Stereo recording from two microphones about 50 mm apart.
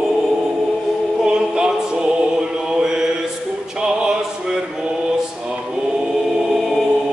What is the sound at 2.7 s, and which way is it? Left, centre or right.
Mantra, centre.